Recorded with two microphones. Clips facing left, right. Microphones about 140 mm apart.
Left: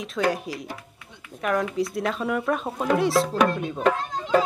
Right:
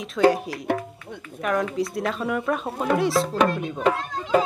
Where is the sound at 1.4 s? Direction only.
Centre (ahead or behind).